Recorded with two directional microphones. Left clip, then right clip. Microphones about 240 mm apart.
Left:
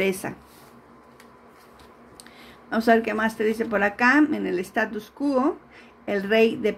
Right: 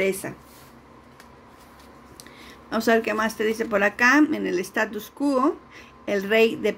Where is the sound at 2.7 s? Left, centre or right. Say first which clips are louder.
Left 1 dB; centre.